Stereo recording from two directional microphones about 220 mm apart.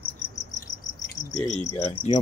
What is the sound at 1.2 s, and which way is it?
Cricket, 35° left (ahead or behind).